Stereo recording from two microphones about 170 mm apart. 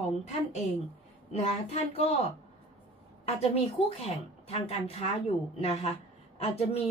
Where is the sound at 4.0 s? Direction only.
35° left (ahead or behind).